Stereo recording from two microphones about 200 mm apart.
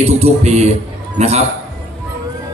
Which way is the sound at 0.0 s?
30° right (ahead or behind).